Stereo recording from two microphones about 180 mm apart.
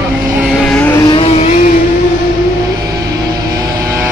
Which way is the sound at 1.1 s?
35° left (ahead or behind).